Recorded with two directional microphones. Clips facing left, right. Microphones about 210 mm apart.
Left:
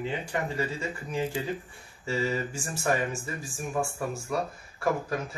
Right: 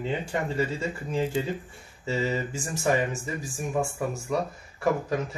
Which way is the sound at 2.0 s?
20° right (ahead or behind).